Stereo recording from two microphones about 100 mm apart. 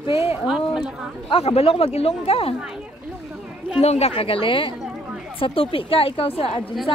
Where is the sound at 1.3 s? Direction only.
90° left.